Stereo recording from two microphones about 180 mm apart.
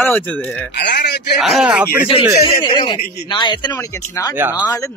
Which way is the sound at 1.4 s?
Centre (ahead or behind).